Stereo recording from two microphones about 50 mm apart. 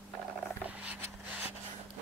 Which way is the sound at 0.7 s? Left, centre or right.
Right.